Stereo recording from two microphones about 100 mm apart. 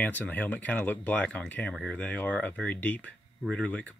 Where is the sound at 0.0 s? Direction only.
15° left (ahead or behind).